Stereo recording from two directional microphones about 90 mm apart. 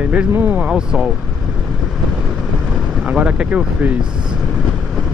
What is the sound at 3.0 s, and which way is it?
Speech, 10° right (ahead or behind).